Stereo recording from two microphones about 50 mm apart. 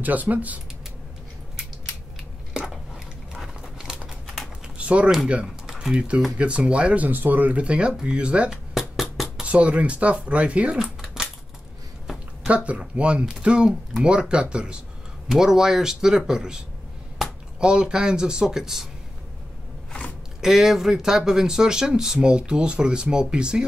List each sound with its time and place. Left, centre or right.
0.0 s speech: right
3.7 s typing: centre
4.7 s a sound: right
5.7 s typing: centre
5.9 s speech: right
7.1 s speech: right
8.7 s a sound: centre
9.4 s speech: right
10.8 s a sound: centre
12.4 s speech: right
15.2 s speech: centre
17.6 s speech: centre
20.3 s speech: centre